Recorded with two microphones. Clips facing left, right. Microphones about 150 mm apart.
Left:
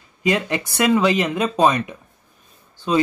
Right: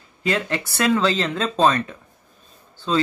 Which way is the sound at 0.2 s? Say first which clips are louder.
Left 3 dB; 15° left (ahead or behind).